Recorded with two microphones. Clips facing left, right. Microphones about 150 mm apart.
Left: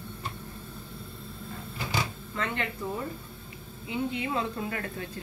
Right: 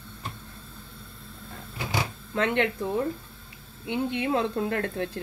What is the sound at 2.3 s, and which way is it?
Speech, 70° right (ahead or behind).